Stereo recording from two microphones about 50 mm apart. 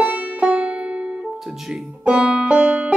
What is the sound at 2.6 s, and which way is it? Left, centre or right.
Music, right.